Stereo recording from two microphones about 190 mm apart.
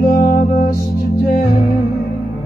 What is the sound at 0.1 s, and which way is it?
Music, 45° left (ahead or behind).